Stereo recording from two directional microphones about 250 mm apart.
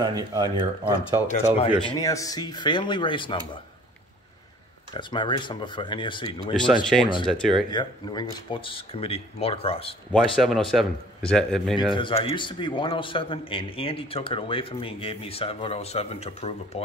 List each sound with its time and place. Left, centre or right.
0.0 s speech: centre
1.2 s speech: left
1.9 s speech: centre
4.9 s speech: centre
6.5 s a man's voice: centre
7.7 s speech: centre
10.1 s a man's voice: centre
11.9 s speech: left